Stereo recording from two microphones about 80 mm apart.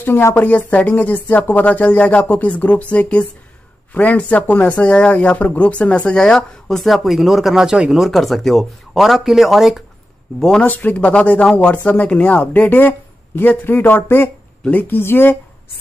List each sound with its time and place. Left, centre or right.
0.0 s speech: left; by 9.8 s centre
10.4 s speech: centre
10.7 s speech: left